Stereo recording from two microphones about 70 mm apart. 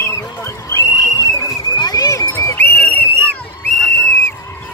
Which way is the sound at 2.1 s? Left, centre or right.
Left.